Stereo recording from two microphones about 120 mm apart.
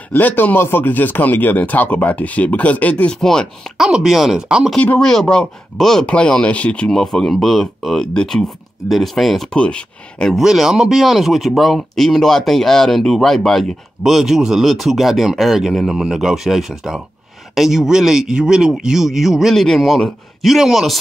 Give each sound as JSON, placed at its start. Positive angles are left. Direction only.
{"t": 0.1, "sound": "speech", "side_deg": 15}
{"t": 4.7, "sound": "speech", "side_deg": 10}